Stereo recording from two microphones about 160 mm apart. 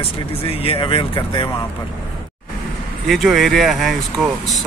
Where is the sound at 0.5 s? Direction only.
35° left (ahead or behind).